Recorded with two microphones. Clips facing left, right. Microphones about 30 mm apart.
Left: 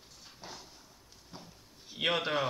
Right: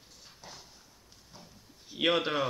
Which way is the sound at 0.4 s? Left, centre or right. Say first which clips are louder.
Left 3 dB; left.